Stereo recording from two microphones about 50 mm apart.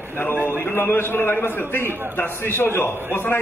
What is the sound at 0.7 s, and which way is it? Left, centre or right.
A man's voice, left.